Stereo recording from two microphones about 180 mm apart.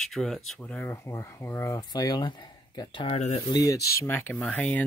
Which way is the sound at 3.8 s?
60° left (ahead or behind).